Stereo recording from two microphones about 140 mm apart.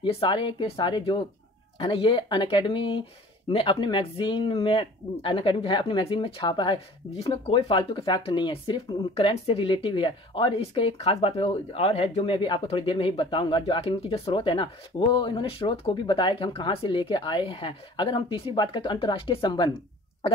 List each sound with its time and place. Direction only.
0.0 s speech: 35° left (ahead or behind)